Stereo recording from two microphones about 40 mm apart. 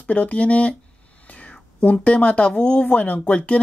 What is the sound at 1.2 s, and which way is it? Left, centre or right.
Whispering, left.